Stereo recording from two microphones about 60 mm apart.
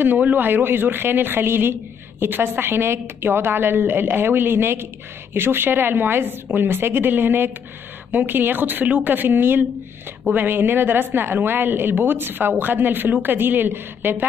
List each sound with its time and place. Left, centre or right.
0.0 s speech: right